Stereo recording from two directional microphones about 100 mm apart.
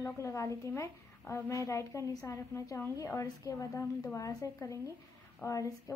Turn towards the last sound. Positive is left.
turn(degrees=35)  # may be behind; listen again after turning